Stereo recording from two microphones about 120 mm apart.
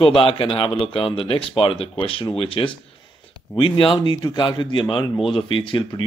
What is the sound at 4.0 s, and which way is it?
A man's voice, 35° left (ahead or behind).